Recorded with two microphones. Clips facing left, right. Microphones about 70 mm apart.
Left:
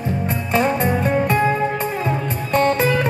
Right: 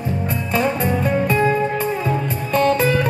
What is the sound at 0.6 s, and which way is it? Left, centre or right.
Music, left.